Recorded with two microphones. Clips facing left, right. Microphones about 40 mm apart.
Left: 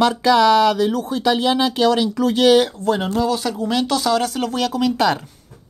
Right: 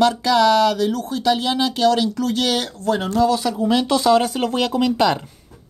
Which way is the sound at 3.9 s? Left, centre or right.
Right.